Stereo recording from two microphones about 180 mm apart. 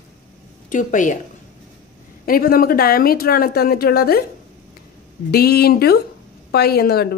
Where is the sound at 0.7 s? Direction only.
45° left (ahead or behind).